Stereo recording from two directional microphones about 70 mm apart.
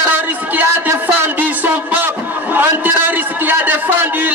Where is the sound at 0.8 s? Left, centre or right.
Right.